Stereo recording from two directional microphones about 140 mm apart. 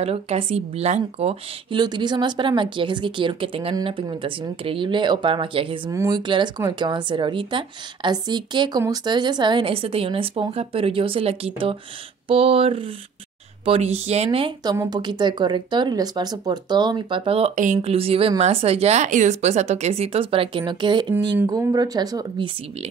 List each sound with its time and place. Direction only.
0.0 s speech: 45° right (ahead or behind)
1.7 s speech: 30° right (ahead or behind)
5.9 s speech: 25° right (ahead or behind); by 14.5 s 45° right (ahead or behind)
14.6 s speech: 30° right (ahead or behind)